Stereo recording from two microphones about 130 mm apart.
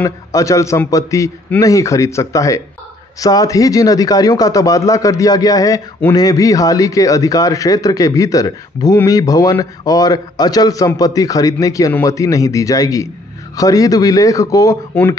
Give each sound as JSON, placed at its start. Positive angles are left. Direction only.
{"t": 0.0, "sound": "a man's voice", "side_deg": 25}